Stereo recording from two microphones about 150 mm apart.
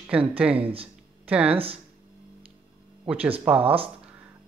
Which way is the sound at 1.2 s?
10° right (ahead or behind).